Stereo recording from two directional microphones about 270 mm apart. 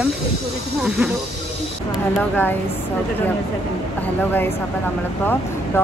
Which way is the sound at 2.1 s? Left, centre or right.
Centre.